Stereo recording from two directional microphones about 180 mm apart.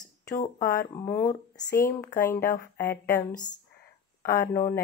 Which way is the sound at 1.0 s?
15° left (ahead or behind).